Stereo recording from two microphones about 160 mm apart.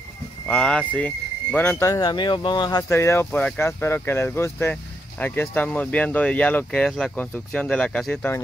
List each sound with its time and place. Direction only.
0.5 s speech: 5° left (ahead or behind)